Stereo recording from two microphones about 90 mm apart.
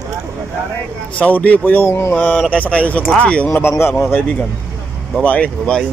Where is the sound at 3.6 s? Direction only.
25° left (ahead or behind).